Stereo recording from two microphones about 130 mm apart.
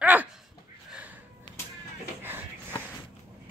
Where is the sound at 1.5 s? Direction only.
35° left (ahead or behind).